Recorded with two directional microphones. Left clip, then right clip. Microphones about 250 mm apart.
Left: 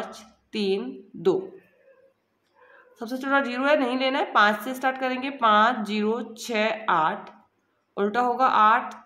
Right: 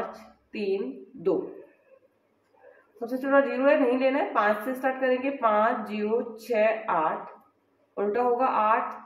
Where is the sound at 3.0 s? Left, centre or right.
Left.